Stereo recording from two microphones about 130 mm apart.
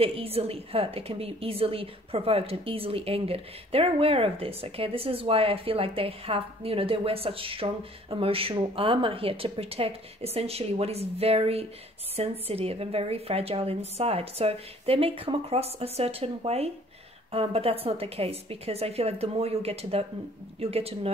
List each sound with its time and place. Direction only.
0.0 s a woman's voice: 45° right (ahead or behind)